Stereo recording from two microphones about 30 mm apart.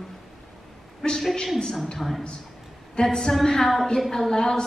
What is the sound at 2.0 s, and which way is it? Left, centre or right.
Speech, centre.